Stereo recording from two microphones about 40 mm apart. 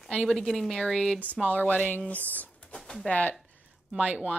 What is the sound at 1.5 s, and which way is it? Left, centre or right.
A woman's voice, left.